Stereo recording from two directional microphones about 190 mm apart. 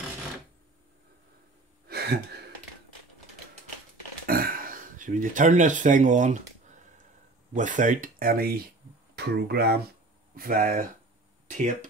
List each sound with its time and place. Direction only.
1.9 s gasp: 55° right (ahead or behind)
4.3 s speech: 50° right (ahead or behind)
7.5 s speech: 40° right (ahead or behind)